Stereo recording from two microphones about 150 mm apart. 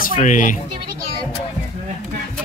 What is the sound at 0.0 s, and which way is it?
Speech, 60° left (ahead or behind).